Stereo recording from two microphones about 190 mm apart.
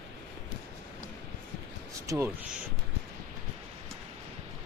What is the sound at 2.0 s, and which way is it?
Speech, 15° right (ahead or behind).